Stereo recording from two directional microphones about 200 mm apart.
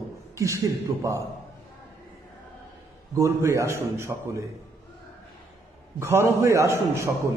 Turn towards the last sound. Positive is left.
turn(degrees=-15)  # may be behind; listen again after turning